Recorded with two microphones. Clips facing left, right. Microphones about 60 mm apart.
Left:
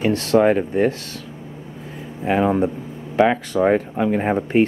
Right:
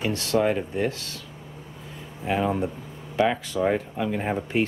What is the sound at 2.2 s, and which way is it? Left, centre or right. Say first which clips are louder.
Speech: left 7 dB; left.